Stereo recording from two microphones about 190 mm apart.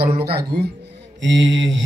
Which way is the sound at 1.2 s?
80° right.